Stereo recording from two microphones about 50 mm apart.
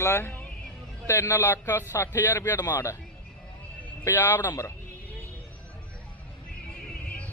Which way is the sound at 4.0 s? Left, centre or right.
Left.